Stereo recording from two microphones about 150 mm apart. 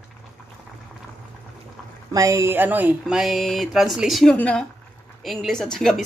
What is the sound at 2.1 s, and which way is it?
Speech, 20° right (ahead or behind).